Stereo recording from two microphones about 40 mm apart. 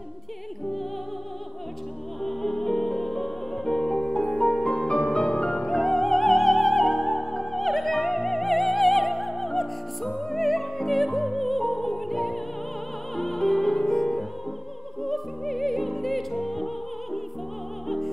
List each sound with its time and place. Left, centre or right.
2.2 s music: centre
4.2 s music: left
4.5 s music: centre
5.7 s opera: centre
13.1 s music: centre